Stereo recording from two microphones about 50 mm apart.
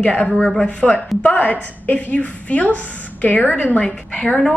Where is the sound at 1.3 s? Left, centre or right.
Left.